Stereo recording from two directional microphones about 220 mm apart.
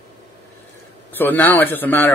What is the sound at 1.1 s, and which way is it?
Speech, 10° left (ahead or behind).